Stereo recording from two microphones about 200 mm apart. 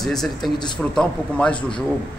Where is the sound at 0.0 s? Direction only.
Centre (ahead or behind).